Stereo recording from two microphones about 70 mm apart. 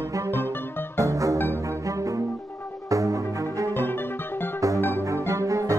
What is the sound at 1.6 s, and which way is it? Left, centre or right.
Music, right.